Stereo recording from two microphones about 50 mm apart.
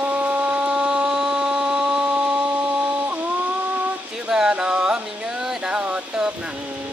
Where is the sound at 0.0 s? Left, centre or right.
Right.